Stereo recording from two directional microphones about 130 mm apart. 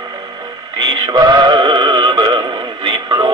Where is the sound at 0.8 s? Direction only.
30° right (ahead or behind).